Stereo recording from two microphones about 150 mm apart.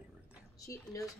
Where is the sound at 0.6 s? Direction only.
20° left (ahead or behind).